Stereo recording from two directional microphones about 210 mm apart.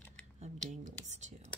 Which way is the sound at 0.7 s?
35° right (ahead or behind).